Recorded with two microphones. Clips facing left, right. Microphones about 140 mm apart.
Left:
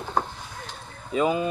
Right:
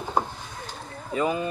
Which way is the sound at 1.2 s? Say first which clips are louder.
Left 2 dB; 20° left (ahead or behind).